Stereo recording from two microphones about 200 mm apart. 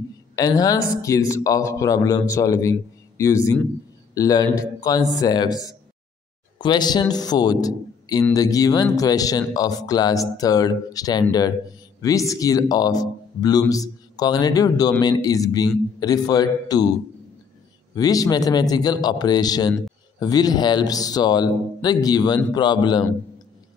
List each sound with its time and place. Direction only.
0.4 s a man's voice: 20° left (ahead or behind)
17.9 s a man's voice: 20° left (ahead or behind)